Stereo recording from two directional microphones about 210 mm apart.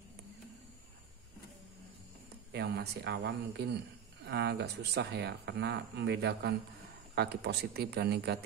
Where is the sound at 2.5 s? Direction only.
50° right (ahead or behind).